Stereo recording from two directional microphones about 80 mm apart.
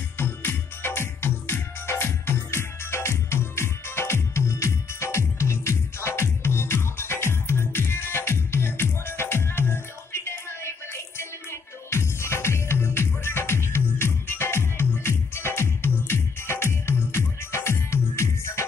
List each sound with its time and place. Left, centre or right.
0.2 s music: left